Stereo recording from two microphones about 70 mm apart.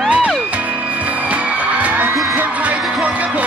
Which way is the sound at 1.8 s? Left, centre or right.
Right.